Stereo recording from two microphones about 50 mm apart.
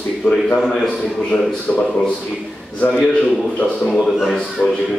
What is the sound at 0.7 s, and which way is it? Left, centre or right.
A man's voice, centre.